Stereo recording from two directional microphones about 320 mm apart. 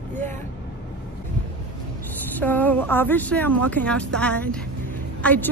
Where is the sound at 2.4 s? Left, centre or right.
Centre.